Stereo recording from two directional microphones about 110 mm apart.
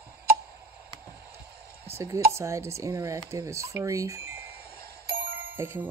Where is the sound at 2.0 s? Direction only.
25° right (ahead or behind).